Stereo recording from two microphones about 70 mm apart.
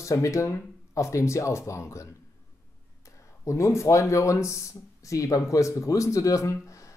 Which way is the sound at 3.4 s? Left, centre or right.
Left.